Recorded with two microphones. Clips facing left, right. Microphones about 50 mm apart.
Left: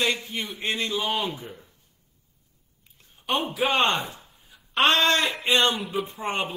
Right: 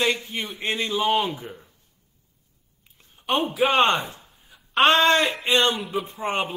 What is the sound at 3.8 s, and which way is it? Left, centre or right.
Speech, right.